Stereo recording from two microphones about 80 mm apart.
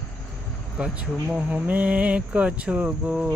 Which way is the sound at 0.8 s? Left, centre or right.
Centre.